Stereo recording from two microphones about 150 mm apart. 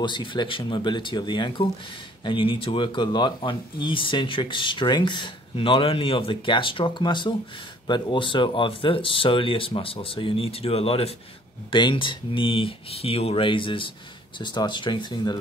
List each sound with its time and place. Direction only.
0.0 s speech: 30° left (ahead or behind)